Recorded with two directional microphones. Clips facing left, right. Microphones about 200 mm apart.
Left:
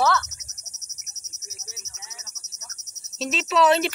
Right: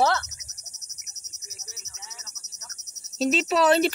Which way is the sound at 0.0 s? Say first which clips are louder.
Even; 35° right (ahead or behind).